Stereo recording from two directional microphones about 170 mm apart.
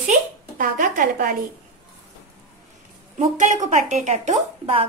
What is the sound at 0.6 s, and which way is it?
Speech, 50° right (ahead or behind).